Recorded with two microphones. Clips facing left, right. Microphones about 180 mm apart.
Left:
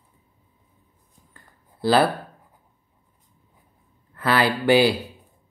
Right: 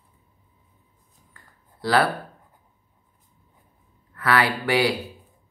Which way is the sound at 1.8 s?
25° left (ahead or behind).